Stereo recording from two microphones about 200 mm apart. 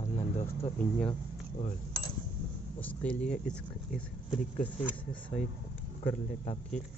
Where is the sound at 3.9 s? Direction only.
40° left (ahead or behind).